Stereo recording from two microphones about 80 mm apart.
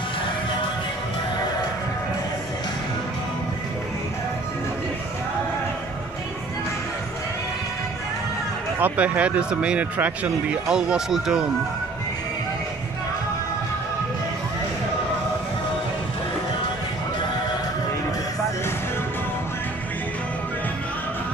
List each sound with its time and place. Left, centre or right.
8.7 s speech: centre